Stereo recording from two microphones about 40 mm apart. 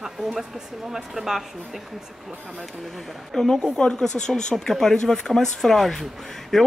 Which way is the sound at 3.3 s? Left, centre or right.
Centre.